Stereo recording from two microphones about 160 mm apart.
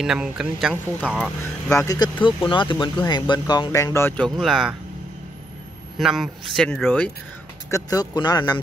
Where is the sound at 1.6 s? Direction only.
20° left (ahead or behind); by 4.7 s centre (ahead or behind).